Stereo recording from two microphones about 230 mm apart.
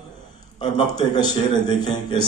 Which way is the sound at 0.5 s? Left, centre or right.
Centre.